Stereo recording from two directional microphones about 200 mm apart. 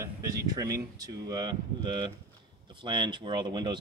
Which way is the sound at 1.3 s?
20° right (ahead or behind).